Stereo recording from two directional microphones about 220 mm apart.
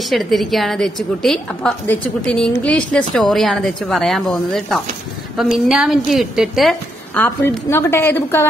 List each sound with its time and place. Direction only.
0.1 s a woman's voice: centre (ahead or behind)